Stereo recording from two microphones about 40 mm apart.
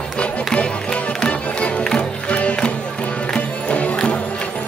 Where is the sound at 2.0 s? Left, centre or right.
Left.